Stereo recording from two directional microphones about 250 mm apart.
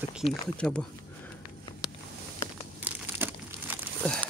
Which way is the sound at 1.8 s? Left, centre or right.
Centre.